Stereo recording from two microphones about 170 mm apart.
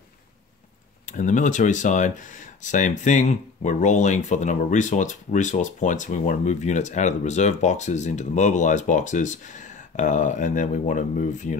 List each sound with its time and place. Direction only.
1.0 s speech: 50° left (ahead or behind)